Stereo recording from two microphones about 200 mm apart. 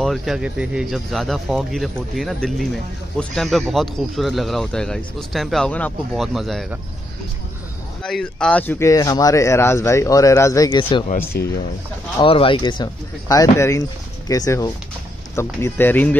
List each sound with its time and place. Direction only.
0.0 s speech: centre (ahead or behind)
8.0 s speech: 5° left (ahead or behind); by 11.1 s 25° left (ahead or behind)
11.3 s speech: 50° left (ahead or behind)
12.2 s speech: 25° left (ahead or behind); by 16.2 s 10° left (ahead or behind)